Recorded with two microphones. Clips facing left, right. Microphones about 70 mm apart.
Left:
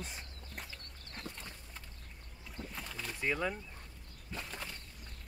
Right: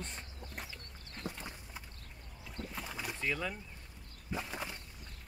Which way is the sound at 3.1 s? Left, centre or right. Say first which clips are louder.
Left 3 dB; centre.